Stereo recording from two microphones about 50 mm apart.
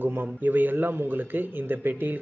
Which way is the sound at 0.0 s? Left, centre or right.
Right.